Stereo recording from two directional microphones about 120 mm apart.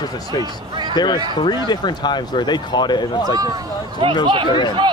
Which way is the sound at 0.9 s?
40° left (ahead or behind).